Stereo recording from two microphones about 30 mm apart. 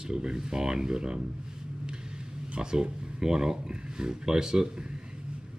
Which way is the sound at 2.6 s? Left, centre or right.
Right.